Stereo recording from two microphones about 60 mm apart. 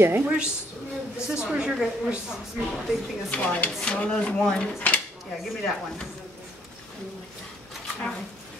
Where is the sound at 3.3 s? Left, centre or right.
Left.